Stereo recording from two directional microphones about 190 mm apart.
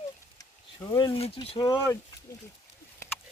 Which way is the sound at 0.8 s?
20° left (ahead or behind).